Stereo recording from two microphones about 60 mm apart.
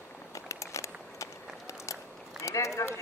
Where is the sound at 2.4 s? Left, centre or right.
Left.